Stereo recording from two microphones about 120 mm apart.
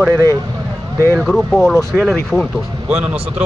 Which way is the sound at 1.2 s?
5° left (ahead or behind).